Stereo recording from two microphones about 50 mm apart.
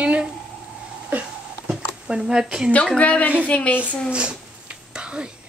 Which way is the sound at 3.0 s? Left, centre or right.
Left.